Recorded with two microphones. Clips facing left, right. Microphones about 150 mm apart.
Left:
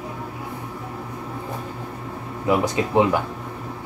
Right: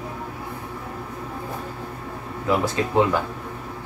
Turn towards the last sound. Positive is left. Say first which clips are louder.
# left 1 dB
turn(degrees=15)  # may be behind; listen again after turning